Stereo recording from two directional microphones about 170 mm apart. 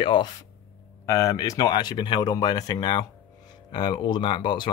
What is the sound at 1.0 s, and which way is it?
Speech, 20° left (ahead or behind).